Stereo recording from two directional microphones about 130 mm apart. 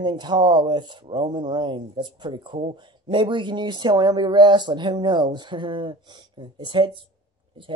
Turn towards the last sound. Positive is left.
turn(degrees=-40)  # may be behind; listen again after turning